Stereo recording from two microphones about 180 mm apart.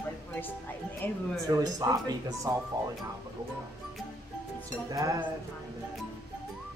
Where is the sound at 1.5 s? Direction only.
20° right (ahead or behind).